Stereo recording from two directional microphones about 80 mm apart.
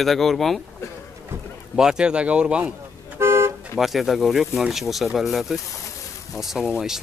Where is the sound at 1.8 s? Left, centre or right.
Centre.